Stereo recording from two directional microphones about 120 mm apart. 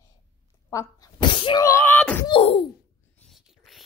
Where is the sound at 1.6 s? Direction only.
20° left (ahead or behind).